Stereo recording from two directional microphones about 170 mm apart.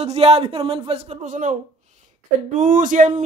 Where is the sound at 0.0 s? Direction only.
40° right (ahead or behind).